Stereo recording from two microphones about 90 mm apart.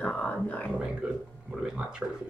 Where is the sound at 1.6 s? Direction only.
10° right (ahead or behind).